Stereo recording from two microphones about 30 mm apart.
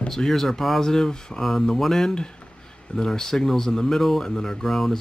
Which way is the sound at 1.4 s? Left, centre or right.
Centre.